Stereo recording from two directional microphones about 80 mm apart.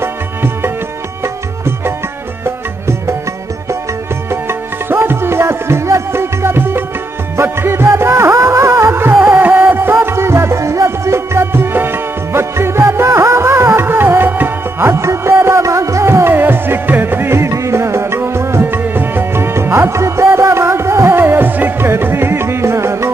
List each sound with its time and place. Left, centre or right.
1.2 s music: right
4.3 s music: right
9.4 s music: centre; by 23.0 s right